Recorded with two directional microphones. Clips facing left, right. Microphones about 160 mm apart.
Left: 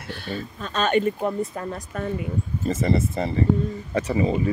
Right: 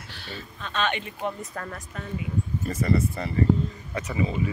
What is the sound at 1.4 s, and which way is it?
Speech, 25° left (ahead or behind).